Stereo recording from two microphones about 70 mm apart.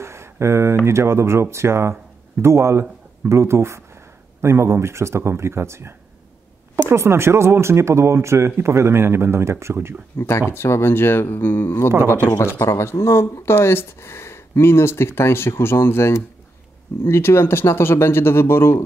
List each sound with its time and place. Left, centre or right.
0.0 s a sound: right
0.8 s speech: right
10.1 s speech: left
11.9 s speech: right
12.6 s speech: left